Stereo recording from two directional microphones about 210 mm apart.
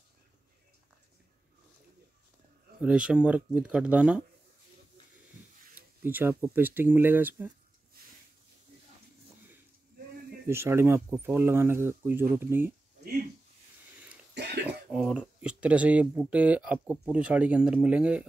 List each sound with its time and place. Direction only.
2.8 s speech: 5° right (ahead or behind)
5.8 s speech: 10° right (ahead or behind)
10.4 s speech: 10° right (ahead or behind)
14.3 s throat clearing: 50° right (ahead or behind)
14.9 s speech: 5° right (ahead or behind)